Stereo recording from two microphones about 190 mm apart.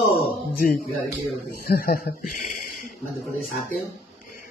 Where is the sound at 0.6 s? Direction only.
50° left (ahead or behind).